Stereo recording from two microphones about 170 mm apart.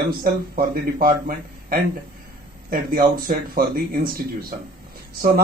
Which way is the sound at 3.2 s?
55° right (ahead or behind).